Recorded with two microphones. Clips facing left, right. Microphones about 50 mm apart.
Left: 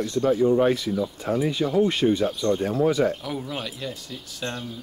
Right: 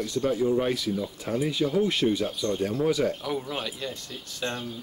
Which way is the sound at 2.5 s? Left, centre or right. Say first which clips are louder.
Left 3 dB; left.